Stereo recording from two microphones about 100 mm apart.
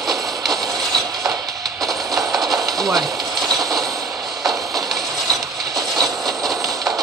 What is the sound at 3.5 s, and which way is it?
Train, centre (ahead or behind).